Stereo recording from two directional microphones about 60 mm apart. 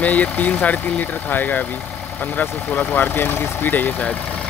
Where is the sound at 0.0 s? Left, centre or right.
Left.